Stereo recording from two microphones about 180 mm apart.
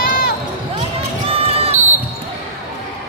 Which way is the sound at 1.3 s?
35° right (ahead or behind).